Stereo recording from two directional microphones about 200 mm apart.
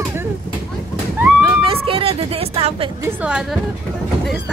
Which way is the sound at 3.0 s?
5° right (ahead or behind).